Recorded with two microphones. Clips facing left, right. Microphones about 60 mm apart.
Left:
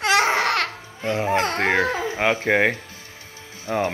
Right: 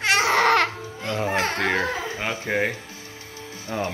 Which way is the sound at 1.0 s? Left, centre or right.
Left.